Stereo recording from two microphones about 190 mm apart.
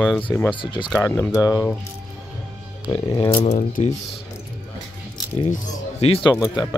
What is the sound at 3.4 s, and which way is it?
Speech, 40° left (ahead or behind).